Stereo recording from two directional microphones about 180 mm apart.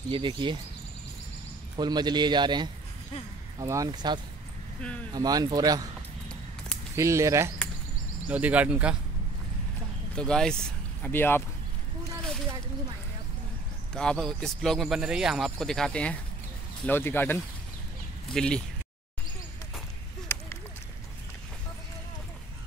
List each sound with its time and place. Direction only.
0.1 s a man's voice: 30° right (ahead or behind)
1.8 s a man's voice: 25° right (ahead or behind)
7.0 s speech: 15° right (ahead or behind)
10.1 s speech: 5° left (ahead or behind)
13.9 s speech: 5° left (ahead or behind)